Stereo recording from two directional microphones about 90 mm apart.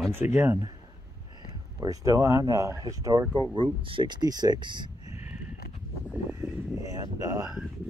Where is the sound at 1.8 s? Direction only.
40° right (ahead or behind).